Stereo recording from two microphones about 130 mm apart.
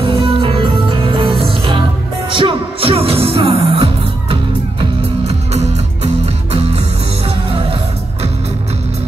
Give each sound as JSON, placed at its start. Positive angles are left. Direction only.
{"t": 0.0, "sound": "music", "side_deg": -40}